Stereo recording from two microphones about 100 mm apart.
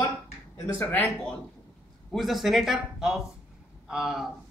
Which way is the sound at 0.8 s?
15° left (ahead or behind).